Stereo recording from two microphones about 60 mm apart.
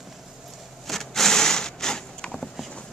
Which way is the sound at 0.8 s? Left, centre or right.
Centre.